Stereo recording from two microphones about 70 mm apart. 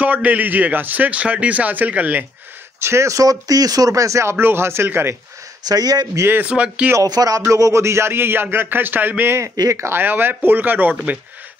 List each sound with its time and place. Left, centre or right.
0.0 s a man's voice: right
2.8 s speech: right
5.7 s speech: right
6.4 s a man's voice: centre
7.0 s speech: right
7.4 s speech: right
9.9 s a man's voice: right